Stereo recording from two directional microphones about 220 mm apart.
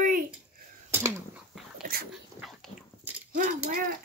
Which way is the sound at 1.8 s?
45° right (ahead or behind).